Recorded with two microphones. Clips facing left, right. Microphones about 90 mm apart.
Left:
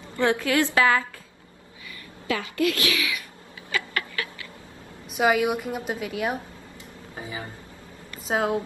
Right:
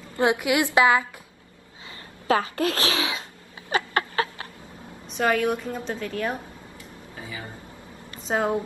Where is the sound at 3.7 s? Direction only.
30° right (ahead or behind).